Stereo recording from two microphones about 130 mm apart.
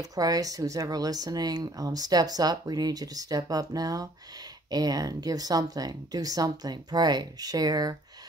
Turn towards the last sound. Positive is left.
turn(degrees=-30)  # may be behind; listen again after turning